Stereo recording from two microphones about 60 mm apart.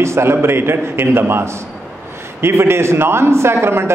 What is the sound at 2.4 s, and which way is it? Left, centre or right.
A man's voice, right.